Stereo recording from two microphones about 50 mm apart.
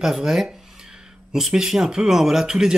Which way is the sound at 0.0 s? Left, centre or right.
Centre.